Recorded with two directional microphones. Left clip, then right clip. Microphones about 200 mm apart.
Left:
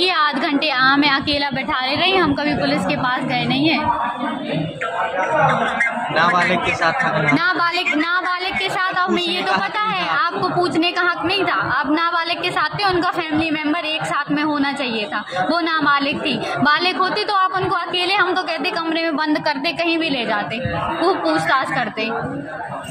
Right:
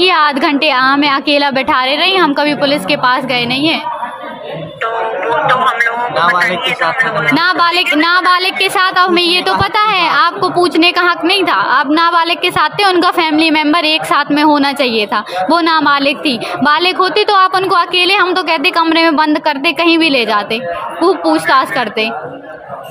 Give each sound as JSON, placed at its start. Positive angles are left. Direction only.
{"t": 0.0, "sound": "a woman's voice", "side_deg": -35}
{"t": 5.5, "sound": "a woman's voice", "side_deg": -55}
{"t": 7.3, "sound": "a woman's voice", "side_deg": -40}